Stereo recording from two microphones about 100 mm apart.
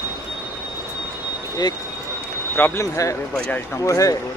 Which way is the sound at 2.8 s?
30° left (ahead or behind).